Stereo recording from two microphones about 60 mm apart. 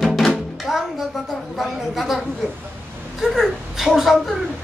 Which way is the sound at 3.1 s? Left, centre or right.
Centre.